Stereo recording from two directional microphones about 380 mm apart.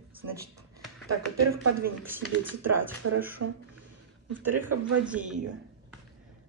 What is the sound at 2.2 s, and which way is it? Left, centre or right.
Music, centre.